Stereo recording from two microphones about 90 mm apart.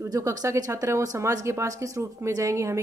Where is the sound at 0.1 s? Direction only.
40° right (ahead or behind).